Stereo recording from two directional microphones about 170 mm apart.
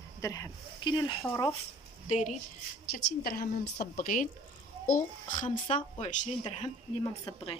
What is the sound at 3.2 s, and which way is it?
A woman's voice, 60° left (ahead or behind).